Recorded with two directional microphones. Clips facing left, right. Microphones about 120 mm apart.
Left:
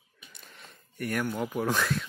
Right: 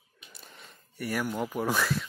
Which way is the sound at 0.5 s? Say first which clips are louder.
Left 2 dB; centre (ahead or behind).